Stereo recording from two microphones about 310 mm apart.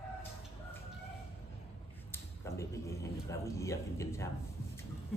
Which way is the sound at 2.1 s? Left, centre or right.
Centre.